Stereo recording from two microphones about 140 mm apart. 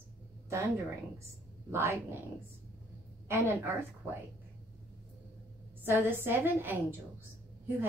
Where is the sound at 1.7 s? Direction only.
15° right (ahead or behind).